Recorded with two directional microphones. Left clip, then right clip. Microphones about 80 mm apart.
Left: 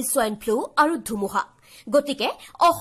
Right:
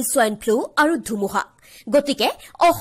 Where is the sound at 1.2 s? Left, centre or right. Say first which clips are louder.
Even; right.